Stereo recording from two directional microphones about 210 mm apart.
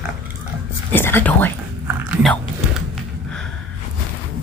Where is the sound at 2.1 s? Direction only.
Centre (ahead or behind).